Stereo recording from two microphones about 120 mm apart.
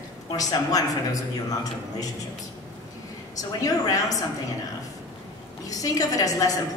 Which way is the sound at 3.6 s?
30° left (ahead or behind).